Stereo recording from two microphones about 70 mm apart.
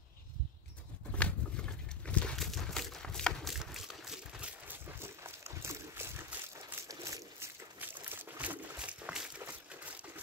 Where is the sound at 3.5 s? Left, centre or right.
Centre.